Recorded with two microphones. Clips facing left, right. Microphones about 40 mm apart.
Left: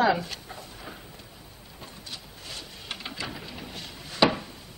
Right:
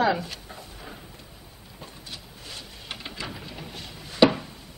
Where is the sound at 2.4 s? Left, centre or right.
Centre.